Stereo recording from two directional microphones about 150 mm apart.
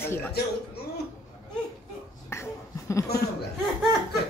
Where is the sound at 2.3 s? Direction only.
20° left (ahead or behind).